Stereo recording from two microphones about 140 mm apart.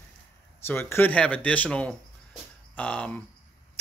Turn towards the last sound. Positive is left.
turn(degrees=10)  # may be behind; listen again after turning